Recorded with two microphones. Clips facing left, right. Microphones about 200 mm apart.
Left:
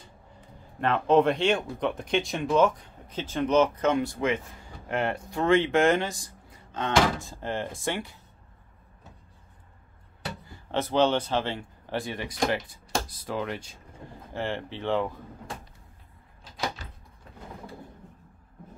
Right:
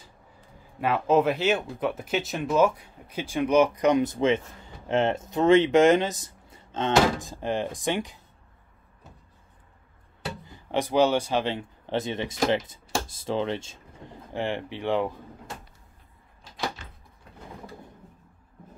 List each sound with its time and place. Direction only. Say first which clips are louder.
0.7 s speech: left 1 dB; 5° right (ahead or behind)
10.4 s a man's voice: right 2 dB; 15° right (ahead or behind)